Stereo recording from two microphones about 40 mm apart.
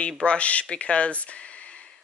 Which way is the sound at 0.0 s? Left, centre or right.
Left.